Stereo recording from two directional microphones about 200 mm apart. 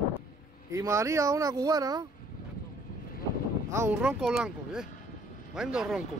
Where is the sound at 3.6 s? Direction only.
15° right (ahead or behind).